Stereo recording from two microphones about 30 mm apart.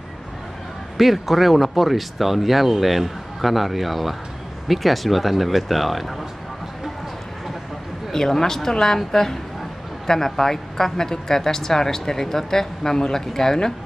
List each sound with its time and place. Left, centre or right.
0.9 s speech: centre
8.1 s speech: centre